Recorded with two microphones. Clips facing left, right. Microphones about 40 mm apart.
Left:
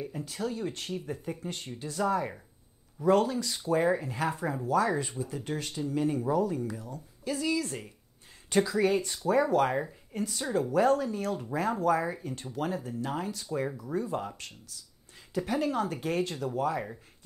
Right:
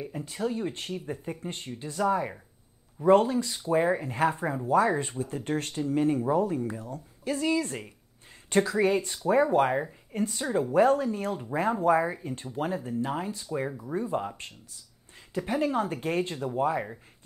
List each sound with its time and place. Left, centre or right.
0.1 s speech: right
2.0 s speech: centre
3.0 s speech: right
7.2 s speech: right
10.1 s speech: right